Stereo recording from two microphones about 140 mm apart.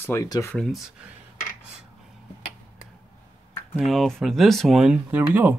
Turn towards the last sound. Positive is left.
turn(degrees=-10)  # may be behind; listen again after turning